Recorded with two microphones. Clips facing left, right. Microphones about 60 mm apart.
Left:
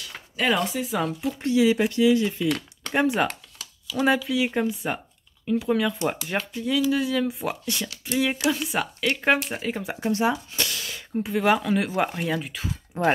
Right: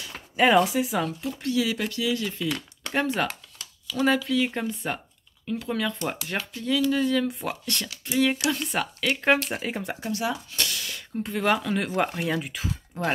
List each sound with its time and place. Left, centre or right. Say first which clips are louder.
0.4 s speech: right 4 dB; centre
1.0 s speech: left 3 dB; left
2.4 s speech: left 4 dB; centre
2.9 s speech: left 3 dB; centre
9.9 s speech: left 5 dB; left
10.5 s speech: left 1 dB; centre
12.9 s speech: left 6 dB; left